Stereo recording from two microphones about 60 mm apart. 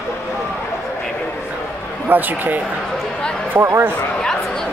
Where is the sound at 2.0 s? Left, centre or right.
Right.